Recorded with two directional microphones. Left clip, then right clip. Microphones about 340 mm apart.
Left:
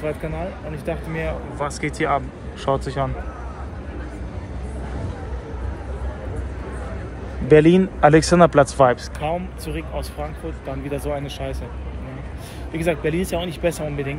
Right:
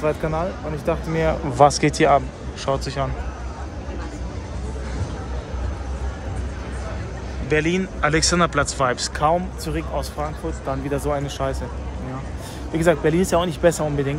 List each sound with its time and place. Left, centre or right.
0.0 s speech: centre
2.6 s speech: centre
7.4 s speech: centre
9.2 s speech: right
11.2 s speech: centre
12.7 s speech: centre